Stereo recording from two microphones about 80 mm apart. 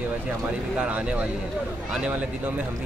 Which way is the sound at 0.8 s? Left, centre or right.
Centre.